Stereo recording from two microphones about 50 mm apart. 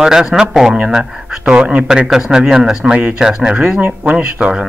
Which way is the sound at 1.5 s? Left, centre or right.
Right.